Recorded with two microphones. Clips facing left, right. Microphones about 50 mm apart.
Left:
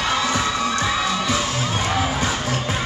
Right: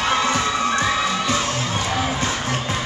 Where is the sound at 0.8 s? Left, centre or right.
Centre.